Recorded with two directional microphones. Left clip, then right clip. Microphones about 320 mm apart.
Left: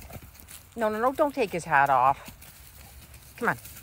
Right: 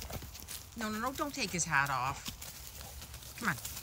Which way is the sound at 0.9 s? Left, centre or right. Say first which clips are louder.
Left 10 dB; left.